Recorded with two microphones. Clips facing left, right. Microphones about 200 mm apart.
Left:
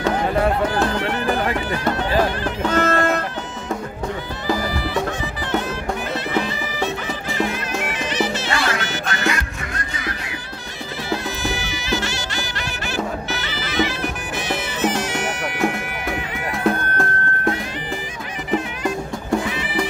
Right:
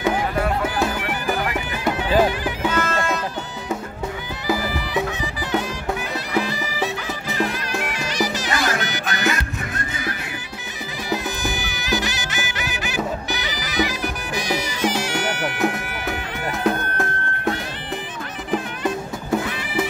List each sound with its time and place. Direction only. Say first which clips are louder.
0.7 s music: left 3 dB; 10° right (ahead or behind)
2.8 s music: left 4 dB; 60° left (ahead or behind)
4.5 s music: left 1 dB; 5° right (ahead or behind)
6.3 s music: right 3 dB; centre (ahead or behind)
11.1 s music: even; centre (ahead or behind)